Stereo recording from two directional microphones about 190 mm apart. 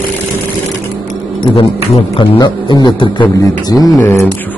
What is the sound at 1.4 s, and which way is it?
A man's voice, 25° left (ahead or behind).